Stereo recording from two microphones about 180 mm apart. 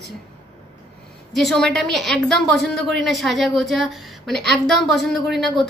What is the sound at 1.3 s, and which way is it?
A woman's voice, centre (ahead or behind).